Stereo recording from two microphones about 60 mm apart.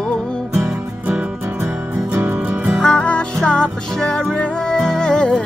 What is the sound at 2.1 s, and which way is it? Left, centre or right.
Music, right.